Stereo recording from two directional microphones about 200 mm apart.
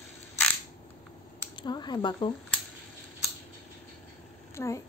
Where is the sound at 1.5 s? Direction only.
20° left (ahead or behind).